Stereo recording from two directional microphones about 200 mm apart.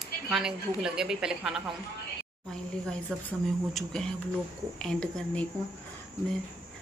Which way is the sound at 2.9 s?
5° left (ahead or behind).